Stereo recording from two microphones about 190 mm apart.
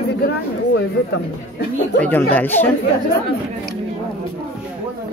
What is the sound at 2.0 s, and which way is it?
Speech, 10° left (ahead or behind).